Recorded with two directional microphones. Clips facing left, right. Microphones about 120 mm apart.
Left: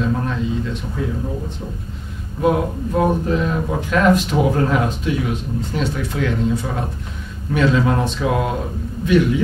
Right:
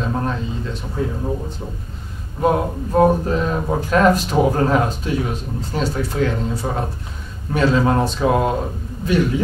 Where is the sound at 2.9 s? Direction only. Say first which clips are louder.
Right 3 dB; 35° right (ahead or behind).